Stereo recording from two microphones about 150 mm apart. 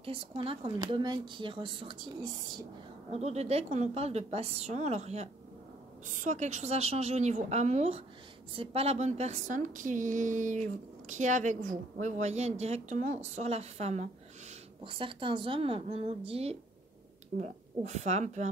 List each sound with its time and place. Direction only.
0.0 s speech: 35° right (ahead or behind)
3.1 s a woman's voice: 45° right (ahead or behind)
14.9 s a woman's voice: 35° right (ahead or behind)